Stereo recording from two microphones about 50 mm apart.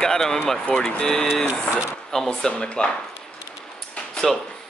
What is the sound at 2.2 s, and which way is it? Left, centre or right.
Speech, centre.